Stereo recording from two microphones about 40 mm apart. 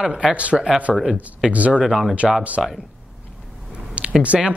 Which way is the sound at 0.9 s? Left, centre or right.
Centre.